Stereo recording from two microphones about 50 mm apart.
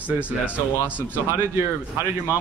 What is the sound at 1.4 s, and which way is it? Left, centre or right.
Speech, right.